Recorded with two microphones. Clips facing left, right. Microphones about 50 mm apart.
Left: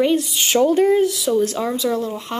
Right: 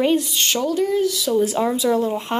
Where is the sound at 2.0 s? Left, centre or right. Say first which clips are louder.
Right 3 dB; right.